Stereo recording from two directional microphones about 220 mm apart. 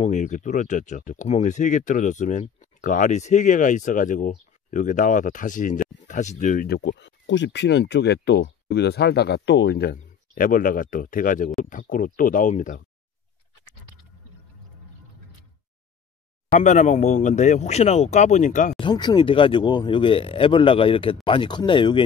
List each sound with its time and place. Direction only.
0.0 s speech: 35° left (ahead or behind)
16.4 s speech: 35° left (ahead or behind)
18.8 s speech: 20° left (ahead or behind)